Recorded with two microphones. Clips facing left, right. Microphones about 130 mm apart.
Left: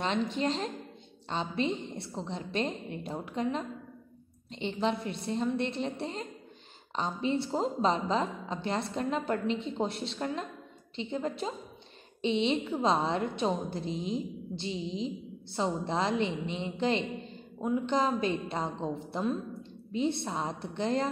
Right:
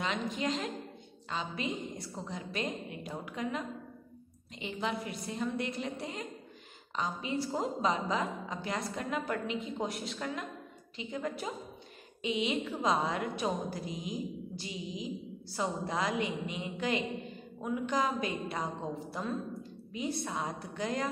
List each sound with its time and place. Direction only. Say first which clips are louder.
0.0 s a woman's voice: left 4 dB; 30° left (ahead or behind)